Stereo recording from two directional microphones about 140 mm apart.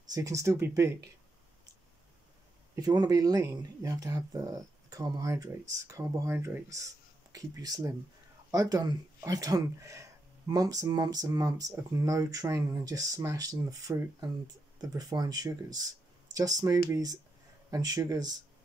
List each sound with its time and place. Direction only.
0.1 s speech: 25° right (ahead or behind)
2.7 s speech: 30° right (ahead or behind)